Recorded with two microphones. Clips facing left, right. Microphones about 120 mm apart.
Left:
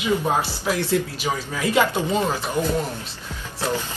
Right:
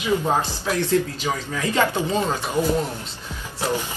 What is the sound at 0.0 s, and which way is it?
Speech, 15° left (ahead or behind).